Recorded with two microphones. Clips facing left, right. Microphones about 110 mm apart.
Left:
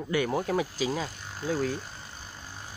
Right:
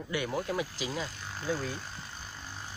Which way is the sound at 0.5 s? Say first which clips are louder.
Left 6 dB; 40° left (ahead or behind).